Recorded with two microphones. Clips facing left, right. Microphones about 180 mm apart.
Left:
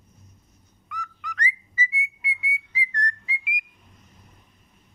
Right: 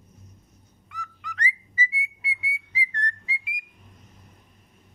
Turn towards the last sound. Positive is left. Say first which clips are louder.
# left 2 dB
turn(degrees=-30)  # may be behind; listen again after turning